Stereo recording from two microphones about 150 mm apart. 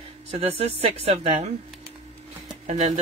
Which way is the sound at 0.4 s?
40° right (ahead or behind).